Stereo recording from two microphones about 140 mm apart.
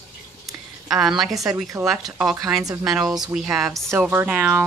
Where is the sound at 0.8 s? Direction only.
5° right (ahead or behind).